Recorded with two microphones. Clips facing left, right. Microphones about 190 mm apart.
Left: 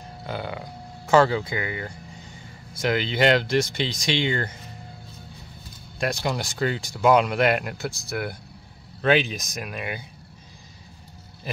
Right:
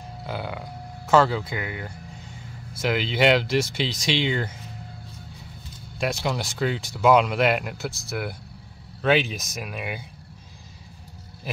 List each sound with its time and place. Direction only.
0.3 s speech: centre (ahead or behind)
5.9 s speech: centre (ahead or behind)